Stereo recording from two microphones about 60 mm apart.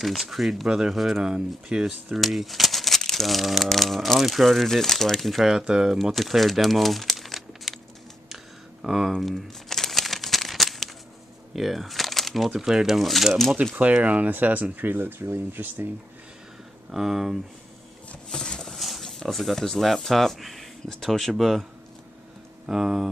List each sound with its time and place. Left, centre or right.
0.0 s speech: centre
2.1 s speech: centre
5.5 s speech: centre
6.1 s speech: centre
8.8 s speech: centre
9.1 s crumpling: centre
12.5 s speech: centre
13.7 s speech: right
16.9 s speech: centre
18.3 s a sound: centre
18.8 s speech: centre
22.7 s speech: centre